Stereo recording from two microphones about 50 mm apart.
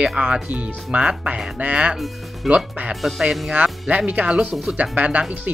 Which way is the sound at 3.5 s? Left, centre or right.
Right.